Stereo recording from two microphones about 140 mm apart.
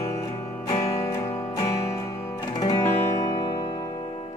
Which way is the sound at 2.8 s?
25° left (ahead or behind).